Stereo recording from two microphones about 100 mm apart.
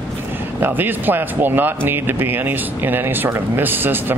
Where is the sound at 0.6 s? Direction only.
20° right (ahead or behind).